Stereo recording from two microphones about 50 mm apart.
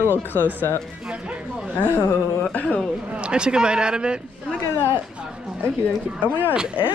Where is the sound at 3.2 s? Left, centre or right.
Centre.